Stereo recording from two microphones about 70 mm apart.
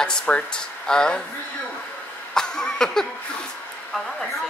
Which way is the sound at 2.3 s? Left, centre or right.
Centre.